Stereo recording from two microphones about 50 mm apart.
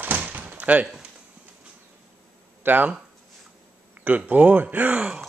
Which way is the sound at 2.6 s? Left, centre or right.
Right.